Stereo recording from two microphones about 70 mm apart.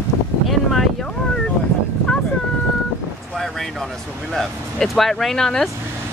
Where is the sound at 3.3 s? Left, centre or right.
Centre.